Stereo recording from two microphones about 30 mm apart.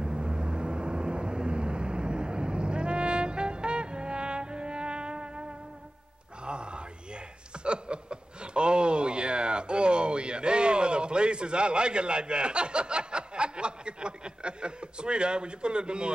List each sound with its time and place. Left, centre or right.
0.0 s vehicle: right
6.4 s a sound: right
7.6 s chuckle: right